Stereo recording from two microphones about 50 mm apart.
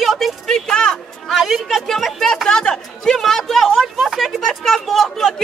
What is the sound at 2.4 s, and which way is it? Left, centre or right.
Speech, centre.